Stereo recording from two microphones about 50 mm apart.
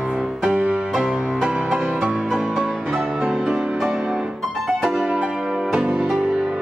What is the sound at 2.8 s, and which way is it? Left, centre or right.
Music, centre.